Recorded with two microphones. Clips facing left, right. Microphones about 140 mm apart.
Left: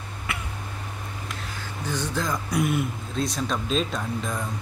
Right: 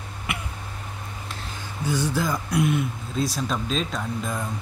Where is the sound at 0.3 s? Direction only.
15° right (ahead or behind).